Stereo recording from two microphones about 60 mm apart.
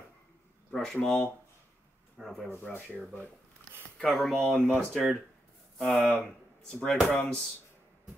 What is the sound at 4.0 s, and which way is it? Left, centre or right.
Speech, centre.